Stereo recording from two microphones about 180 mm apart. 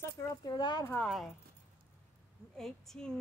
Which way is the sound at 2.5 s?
Centre (ahead or behind).